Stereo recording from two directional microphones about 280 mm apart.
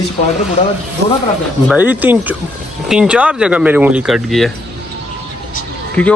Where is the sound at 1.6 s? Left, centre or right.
Centre.